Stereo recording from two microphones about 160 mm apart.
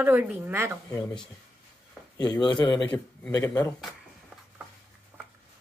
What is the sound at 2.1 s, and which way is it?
Speech, 25° left (ahead or behind).